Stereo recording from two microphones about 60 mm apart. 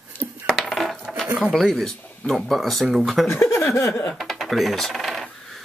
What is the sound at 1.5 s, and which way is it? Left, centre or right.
Speech, centre.